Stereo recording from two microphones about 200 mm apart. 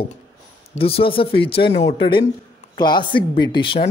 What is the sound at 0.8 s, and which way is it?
Speech, 25° left (ahead or behind).